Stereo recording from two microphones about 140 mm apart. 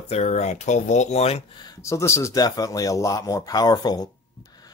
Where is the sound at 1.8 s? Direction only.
20° left (ahead or behind).